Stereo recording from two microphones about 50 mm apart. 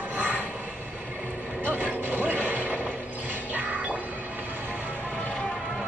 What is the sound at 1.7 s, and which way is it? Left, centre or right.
Music, right.